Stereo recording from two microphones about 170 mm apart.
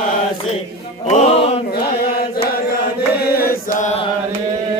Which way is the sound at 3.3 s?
60° left (ahead or behind).